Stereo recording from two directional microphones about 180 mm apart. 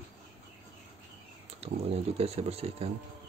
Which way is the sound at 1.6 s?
35° right (ahead or behind).